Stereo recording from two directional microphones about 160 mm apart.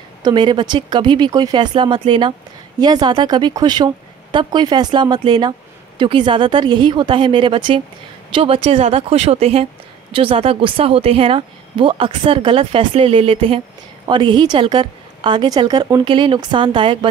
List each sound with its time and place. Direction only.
0.2 s a woman's voice: 30° right (ahead or behind)